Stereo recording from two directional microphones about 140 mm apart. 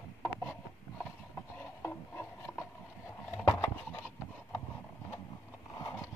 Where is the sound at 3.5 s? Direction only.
20° left (ahead or behind).